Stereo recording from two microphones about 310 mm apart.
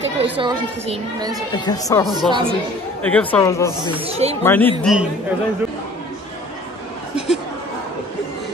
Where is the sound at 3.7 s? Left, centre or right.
Centre.